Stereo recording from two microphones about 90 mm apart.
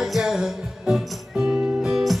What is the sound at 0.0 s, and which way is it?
Music, 5° right (ahead or behind).